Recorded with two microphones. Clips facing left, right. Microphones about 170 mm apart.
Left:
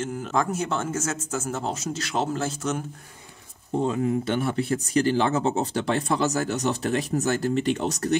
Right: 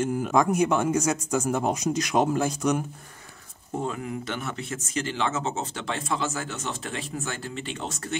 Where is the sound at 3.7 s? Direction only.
25° left (ahead or behind).